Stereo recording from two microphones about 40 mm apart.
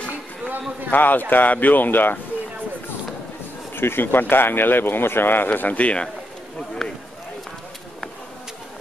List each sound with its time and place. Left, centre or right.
0.9 s speech: left
3.7 s speech: left
6.8 s run: centre